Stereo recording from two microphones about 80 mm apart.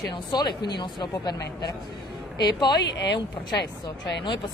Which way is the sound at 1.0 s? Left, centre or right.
Left.